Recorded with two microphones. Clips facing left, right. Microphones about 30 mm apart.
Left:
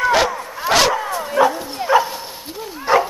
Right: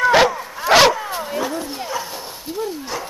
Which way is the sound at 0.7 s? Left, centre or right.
Centre.